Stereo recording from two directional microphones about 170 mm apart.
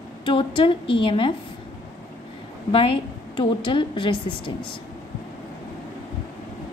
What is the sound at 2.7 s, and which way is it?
A woman's voice, 30° left (ahead or behind).